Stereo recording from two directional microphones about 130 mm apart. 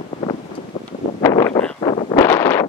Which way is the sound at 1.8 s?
45° left (ahead or behind).